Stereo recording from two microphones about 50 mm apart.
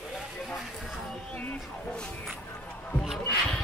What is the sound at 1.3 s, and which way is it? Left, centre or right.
Speech, left.